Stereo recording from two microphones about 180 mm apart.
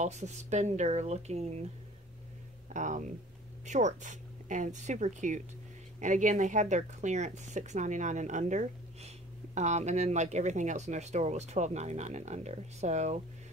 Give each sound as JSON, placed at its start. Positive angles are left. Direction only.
{"t": 0.0, "sound": "speech", "side_deg": -40}
{"t": 2.7, "sound": "speech", "side_deg": -45}